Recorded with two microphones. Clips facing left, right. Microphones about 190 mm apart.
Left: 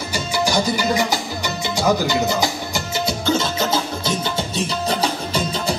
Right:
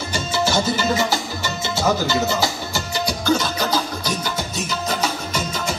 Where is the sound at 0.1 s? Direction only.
10° left (ahead or behind).